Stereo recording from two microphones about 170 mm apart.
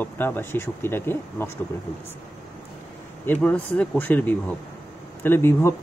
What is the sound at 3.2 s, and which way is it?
Speech, 10° left (ahead or behind).